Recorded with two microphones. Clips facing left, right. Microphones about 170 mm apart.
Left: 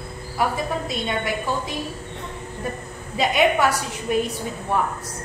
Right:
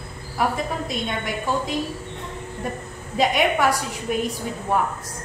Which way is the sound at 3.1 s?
Centre (ahead or behind).